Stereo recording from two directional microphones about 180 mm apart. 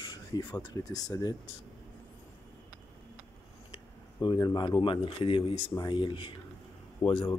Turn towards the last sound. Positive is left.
turn(degrees=25)  # may be behind; listen again after turning